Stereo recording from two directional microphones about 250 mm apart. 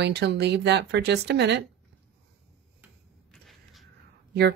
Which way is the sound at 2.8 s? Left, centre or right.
Centre.